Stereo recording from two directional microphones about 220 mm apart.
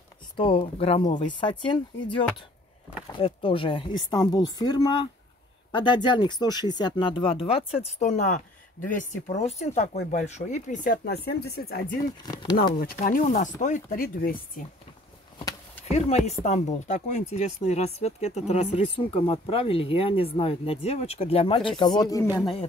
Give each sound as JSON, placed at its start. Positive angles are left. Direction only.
{"t": 0.4, "sound": "speech", "side_deg": 25}
{"t": 3.2, "sound": "speech", "side_deg": 25}
{"t": 15.3, "sound": "a sound", "side_deg": 15}
{"t": 15.9, "sound": "speech", "side_deg": 30}